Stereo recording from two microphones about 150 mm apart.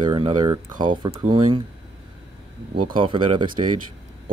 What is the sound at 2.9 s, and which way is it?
Speech, 35° right (ahead or behind).